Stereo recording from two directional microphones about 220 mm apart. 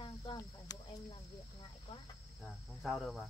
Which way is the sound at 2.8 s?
Centre (ahead or behind).